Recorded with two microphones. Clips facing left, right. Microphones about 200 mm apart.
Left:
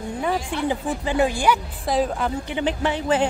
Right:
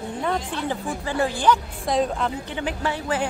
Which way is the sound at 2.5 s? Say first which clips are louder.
Left 4 dB; 20° left (ahead or behind).